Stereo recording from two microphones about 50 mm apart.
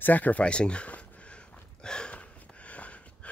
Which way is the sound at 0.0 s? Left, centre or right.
Left.